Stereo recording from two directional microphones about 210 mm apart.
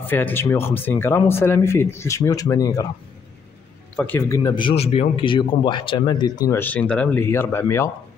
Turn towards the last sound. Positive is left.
turn(degrees=10)  # may be behind; listen again after turning